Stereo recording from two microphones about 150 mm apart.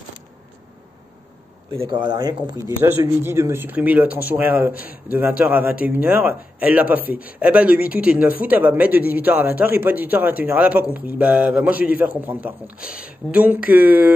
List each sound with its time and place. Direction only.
1.8 s speech: 30° right (ahead or behind); by 14.1 s 10° right (ahead or behind)